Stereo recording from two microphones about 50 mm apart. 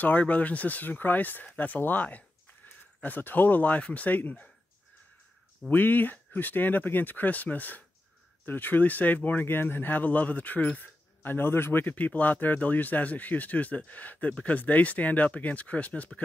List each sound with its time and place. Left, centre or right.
0.0 s speech: left
5.7 s speech: left
11.9 s speech: left